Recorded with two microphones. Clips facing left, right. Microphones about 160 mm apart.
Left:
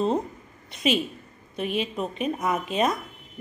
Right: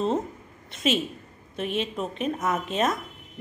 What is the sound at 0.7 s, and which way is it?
A woman's voice, centre (ahead or behind).